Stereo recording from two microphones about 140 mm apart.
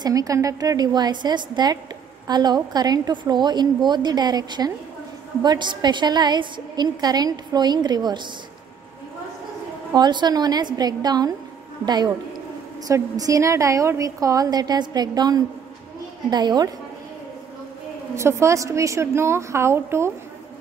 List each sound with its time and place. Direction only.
0.0 s a woman's voice: 25° right (ahead or behind)
9.9 s a woman's voice: 30° right (ahead or behind)
18.1 s a woman's voice: 20° right (ahead or behind)